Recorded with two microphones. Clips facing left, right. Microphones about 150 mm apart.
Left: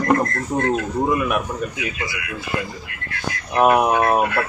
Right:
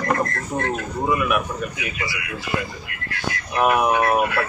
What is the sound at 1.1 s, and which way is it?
Speech, 30° left (ahead or behind).